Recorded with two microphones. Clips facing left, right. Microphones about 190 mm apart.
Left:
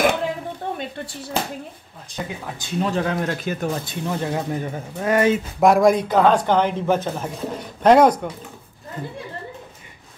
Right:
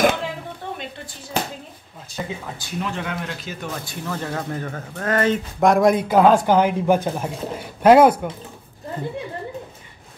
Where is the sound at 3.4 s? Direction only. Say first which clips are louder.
Left 7 dB; 55° left (ahead or behind).